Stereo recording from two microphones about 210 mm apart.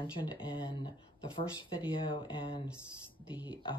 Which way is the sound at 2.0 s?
25° left (ahead or behind).